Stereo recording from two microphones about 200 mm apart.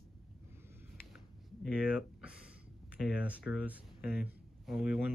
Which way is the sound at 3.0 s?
5° right (ahead or behind).